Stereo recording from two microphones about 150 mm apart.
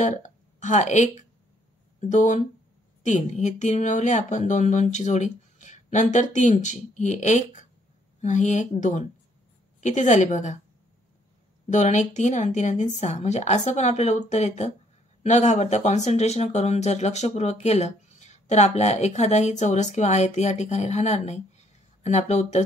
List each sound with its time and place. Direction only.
0.0 s speech: 50° left (ahead or behind)
11.7 s speech: 55° left (ahead or behind)